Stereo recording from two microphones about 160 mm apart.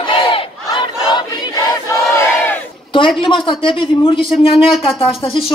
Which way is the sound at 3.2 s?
30° left (ahead or behind).